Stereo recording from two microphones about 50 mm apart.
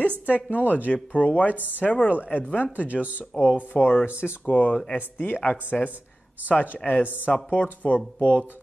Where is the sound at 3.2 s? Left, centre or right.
Left.